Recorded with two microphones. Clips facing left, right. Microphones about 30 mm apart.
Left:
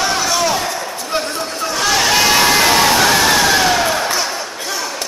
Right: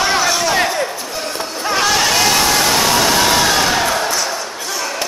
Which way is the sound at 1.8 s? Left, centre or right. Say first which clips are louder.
Left 2 dB; centre.